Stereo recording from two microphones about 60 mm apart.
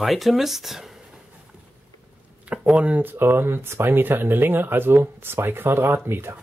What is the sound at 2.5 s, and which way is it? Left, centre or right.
Speech, right.